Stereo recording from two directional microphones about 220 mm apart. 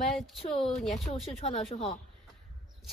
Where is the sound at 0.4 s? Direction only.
25° left (ahead or behind).